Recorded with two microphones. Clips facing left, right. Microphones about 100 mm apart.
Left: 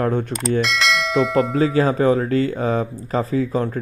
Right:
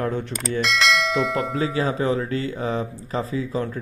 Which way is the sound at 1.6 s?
40° left (ahead or behind).